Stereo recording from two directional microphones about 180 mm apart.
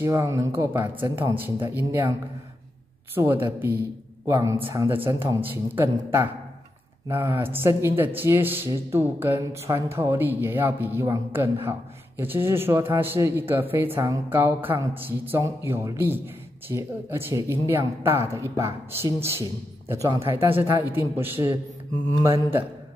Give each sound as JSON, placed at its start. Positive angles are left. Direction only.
{"t": 0.0, "sound": "speech", "side_deg": -15}
{"t": 3.2, "sound": "speech", "side_deg": -15}